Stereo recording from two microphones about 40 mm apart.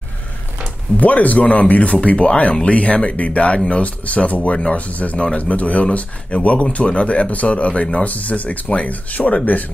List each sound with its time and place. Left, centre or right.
0.9 s speech: left